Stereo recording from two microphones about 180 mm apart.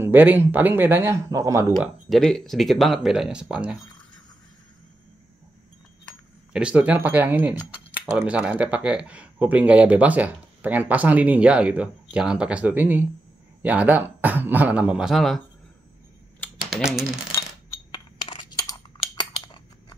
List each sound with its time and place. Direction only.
0.0 s speech: 10° right (ahead or behind)
2.0 s speech: centre (ahead or behind)
6.5 s speech: 5° right (ahead or behind)
16.3 s typing: centre (ahead or behind)
18.3 s a sound: 25° left (ahead or behind)